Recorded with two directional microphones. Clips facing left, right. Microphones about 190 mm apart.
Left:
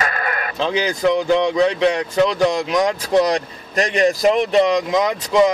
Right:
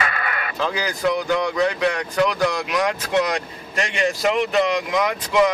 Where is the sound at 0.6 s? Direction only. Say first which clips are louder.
Left 4 dB; 25° left (ahead or behind).